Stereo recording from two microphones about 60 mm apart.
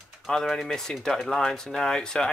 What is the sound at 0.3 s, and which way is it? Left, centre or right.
Speech, centre.